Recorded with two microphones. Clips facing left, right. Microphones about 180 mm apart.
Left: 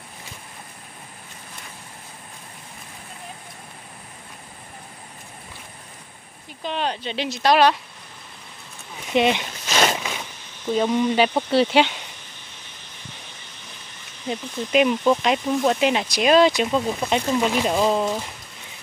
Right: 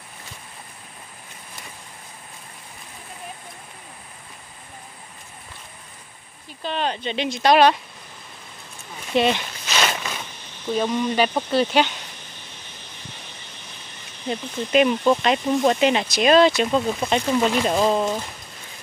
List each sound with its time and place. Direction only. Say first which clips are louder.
6.6 s speech: right 1 dB; 10° left (ahead or behind)
9.1 s a sound: left 1 dB; 15° left (ahead or behind)
10.7 s speech: left 2 dB; 15° left (ahead or behind)
14.3 s speech: right 1 dB; 5° left (ahead or behind)
17.9 s speech: even; 5° right (ahead or behind)